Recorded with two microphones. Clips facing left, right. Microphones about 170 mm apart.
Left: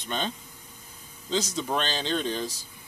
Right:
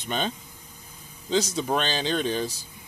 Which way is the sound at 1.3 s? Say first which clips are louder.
Right 3 dB; 10° right (ahead or behind).